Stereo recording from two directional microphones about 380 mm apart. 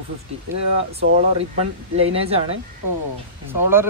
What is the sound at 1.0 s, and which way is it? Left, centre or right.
A man's voice, centre.